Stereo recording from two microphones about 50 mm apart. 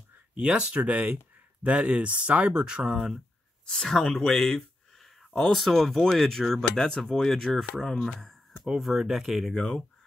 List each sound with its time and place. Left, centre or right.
0.3 s speech: centre
0.7 s speech: right; by 3.2 s centre
3.6 s speech: centre
8.7 s speech: centre
9.5 s speech: centre